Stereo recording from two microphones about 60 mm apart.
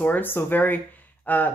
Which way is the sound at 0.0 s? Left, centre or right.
Left.